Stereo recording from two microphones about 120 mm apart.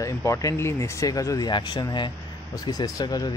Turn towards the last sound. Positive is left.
turn(degrees=30)  # may be behind; listen again after turning